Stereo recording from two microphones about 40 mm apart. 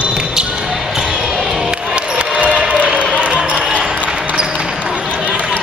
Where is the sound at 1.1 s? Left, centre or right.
Centre.